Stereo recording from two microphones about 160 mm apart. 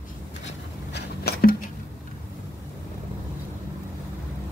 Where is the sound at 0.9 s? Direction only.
80° left.